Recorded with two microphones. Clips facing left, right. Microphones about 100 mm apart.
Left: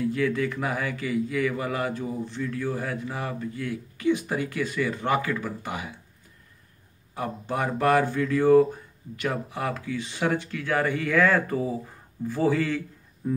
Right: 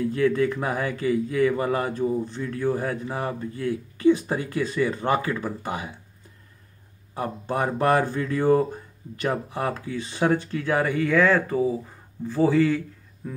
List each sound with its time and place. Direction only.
0.1 s speech: 35° right (ahead or behind)
2.6 s speech: 25° right (ahead or behind)
7.2 s speech: 35° right (ahead or behind)
10.9 s speech: centre (ahead or behind)